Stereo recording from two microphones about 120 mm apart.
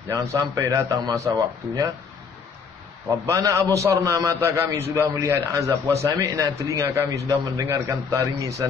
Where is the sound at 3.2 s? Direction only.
25° right (ahead or behind).